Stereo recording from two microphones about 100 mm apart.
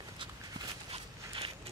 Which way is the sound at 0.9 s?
70° right (ahead or behind).